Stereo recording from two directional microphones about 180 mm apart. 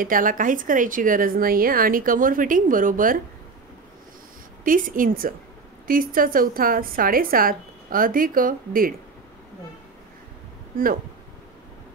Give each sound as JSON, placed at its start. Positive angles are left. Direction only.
{"t": 0.0, "sound": "a woman's voice", "side_deg": -50}
{"t": 4.6, "sound": "a woman's voice", "side_deg": -50}